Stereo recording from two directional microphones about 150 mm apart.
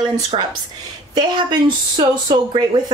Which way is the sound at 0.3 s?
35° right (ahead or behind).